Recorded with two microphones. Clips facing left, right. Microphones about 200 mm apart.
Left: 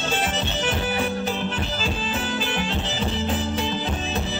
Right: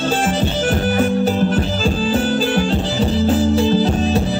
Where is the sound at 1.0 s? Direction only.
40° right (ahead or behind).